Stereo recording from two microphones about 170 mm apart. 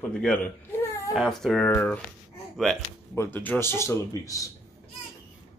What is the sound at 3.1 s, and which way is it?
Speech, 10° left (ahead or behind).